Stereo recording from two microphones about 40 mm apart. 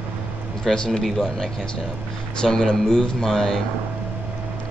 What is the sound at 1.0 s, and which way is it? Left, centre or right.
Speech, centre.